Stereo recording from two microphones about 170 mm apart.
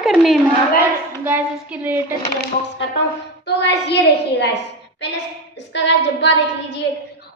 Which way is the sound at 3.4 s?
85° left.